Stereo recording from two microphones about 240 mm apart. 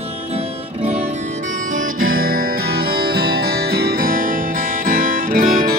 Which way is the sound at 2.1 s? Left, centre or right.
Right.